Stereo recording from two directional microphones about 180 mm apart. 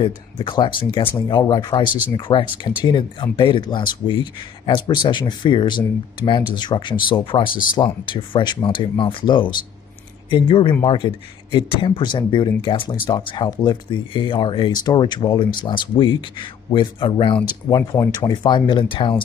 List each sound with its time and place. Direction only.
0.0 s speech: 25° left (ahead or behind)
7.4 s speech: 50° left (ahead or behind)
7.7 s speech: 25° left (ahead or behind)